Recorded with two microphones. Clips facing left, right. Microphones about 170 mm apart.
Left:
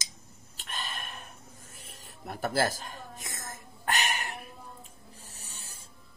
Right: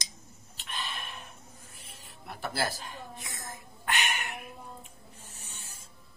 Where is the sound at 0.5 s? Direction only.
45° left (ahead or behind).